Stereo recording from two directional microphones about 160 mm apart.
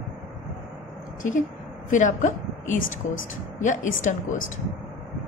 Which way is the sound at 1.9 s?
50° left (ahead or behind).